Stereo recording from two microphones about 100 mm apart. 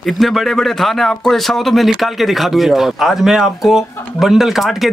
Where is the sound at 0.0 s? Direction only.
Centre (ahead or behind).